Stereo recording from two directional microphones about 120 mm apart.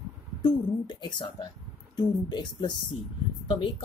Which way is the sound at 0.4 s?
40° left (ahead or behind).